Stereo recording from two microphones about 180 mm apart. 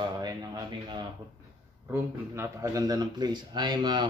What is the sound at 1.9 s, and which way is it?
Speech, 15° right (ahead or behind).